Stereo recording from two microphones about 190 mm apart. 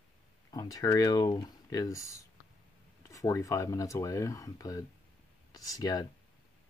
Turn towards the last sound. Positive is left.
turn(degrees=20)  # may be behind; listen again after turning